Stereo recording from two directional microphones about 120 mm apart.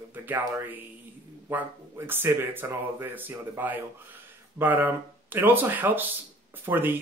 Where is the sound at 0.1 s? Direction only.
15° right (ahead or behind).